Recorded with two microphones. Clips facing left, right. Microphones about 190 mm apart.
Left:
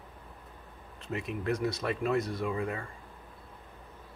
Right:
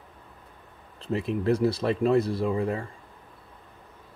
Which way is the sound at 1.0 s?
30° right (ahead or behind).